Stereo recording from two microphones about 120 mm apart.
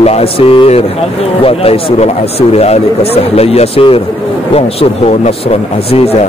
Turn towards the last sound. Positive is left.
turn(degrees=60)  # may be behind; listen again after turning